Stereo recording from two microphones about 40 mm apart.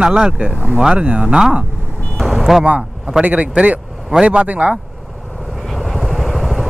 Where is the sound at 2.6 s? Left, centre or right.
Right.